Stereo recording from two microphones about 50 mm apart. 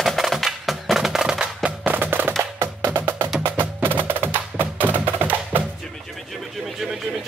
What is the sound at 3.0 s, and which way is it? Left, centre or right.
Wood block, right.